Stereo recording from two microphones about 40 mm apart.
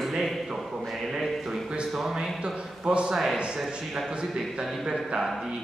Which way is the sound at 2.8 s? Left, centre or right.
Right.